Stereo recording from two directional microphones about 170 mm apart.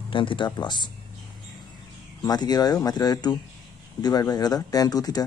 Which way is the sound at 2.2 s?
25° left (ahead or behind).